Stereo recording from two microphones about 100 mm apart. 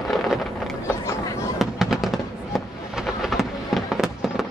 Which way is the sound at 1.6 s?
5° right (ahead or behind).